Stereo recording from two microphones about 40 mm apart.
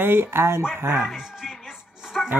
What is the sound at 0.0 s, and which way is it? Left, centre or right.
Speech, right.